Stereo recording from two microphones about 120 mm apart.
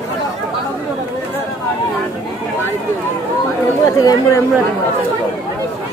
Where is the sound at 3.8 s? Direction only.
30° left (ahead or behind).